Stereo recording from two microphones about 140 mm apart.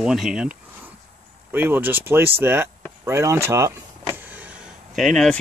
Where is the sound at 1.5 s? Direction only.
15° right (ahead or behind).